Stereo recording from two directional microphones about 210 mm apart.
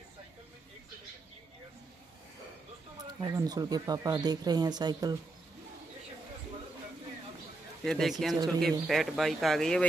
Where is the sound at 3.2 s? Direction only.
20° right (ahead or behind).